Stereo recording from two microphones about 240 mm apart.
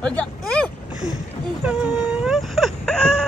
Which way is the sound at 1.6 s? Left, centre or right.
Centre.